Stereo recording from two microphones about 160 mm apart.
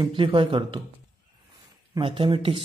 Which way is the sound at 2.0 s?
35° right (ahead or behind).